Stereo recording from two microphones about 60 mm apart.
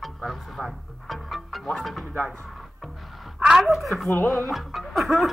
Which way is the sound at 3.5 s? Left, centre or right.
Centre.